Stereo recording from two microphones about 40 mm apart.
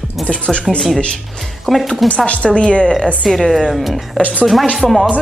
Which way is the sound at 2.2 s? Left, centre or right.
Left.